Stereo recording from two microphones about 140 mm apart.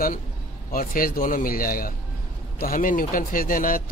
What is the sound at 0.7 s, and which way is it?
Speech, 90° left.